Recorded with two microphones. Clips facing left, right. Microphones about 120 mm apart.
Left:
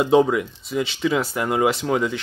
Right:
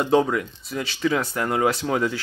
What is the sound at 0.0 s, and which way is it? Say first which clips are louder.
Speech: left 3 dB; 5° left (ahead or behind).